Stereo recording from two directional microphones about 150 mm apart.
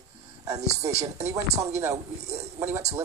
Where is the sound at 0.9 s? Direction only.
45° right (ahead or behind).